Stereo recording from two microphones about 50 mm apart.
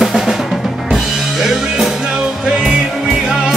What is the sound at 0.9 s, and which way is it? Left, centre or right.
Music, centre.